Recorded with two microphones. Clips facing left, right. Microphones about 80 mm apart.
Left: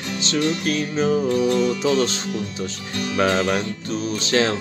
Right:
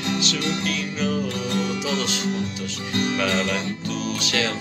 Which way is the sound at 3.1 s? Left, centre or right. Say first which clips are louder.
Left 8 dB; left.